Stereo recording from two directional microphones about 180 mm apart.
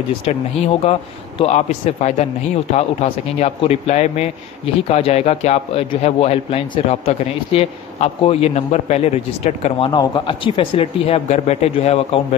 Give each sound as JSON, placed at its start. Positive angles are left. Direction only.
{"t": 1.4, "sound": "a man's voice", "side_deg": 40}
{"t": 9.8, "sound": "a man's voice", "side_deg": 25}